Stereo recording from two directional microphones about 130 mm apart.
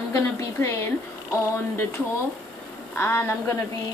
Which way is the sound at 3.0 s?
20° left (ahead or behind).